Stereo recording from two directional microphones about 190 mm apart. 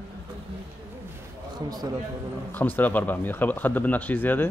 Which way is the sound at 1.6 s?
20° right (ahead or behind).